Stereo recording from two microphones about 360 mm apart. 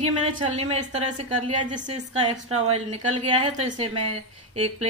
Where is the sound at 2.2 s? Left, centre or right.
Centre.